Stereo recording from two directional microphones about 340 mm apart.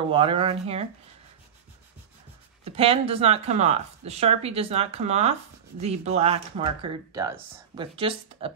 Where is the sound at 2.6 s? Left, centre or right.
Centre.